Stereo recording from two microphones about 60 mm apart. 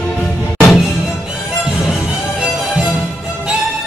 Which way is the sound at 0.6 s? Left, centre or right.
Centre.